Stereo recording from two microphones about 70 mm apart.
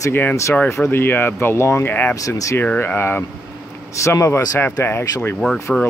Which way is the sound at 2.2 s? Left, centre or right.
Left.